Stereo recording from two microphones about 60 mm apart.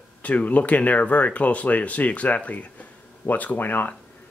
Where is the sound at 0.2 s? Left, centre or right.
Left.